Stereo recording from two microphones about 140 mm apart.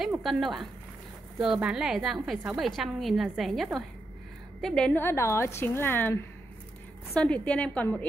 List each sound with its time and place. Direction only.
0.2 s a woman's voice: centre (ahead or behind)
7.2 s a woman's voice: 10° left (ahead or behind)